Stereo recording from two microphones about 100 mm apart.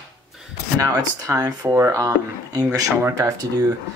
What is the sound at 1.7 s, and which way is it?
Speech, 25° right (ahead or behind).